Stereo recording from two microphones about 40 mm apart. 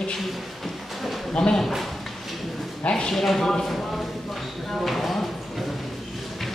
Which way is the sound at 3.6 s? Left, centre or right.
Centre.